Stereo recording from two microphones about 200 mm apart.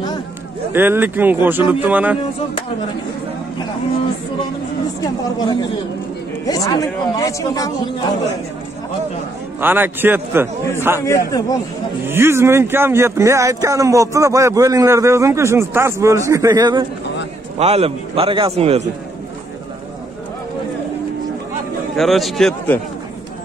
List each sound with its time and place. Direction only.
0.7 s speech: 10° right (ahead or behind)
5.0 s speech: 20° left (ahead or behind)
9.6 s speech: 10° right (ahead or behind)
11.0 s speech: 15° left (ahead or behind)
12.1 s speech: 10° right (ahead or behind)
17.6 s a man's voice: 30° right (ahead or behind)
21.9 s a man's voice: centre (ahead or behind)